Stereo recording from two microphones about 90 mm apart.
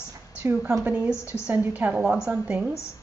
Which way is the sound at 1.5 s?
15° right (ahead or behind).